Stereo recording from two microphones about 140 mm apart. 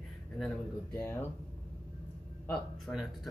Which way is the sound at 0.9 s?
20° left (ahead or behind).